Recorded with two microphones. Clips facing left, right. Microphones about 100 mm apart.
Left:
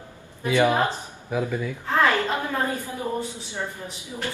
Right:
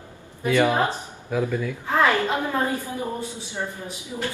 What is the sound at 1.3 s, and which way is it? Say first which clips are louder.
Speech: right 2 dB; 5° left (ahead or behind).